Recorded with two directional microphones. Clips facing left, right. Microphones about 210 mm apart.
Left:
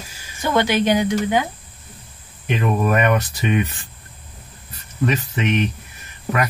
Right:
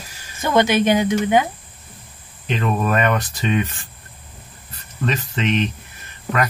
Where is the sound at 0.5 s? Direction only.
20° right (ahead or behind).